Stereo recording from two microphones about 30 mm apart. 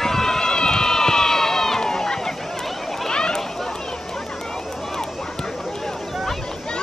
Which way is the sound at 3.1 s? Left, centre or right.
Left.